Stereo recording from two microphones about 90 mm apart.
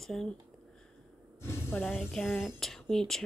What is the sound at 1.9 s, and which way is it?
Speech, centre (ahead or behind).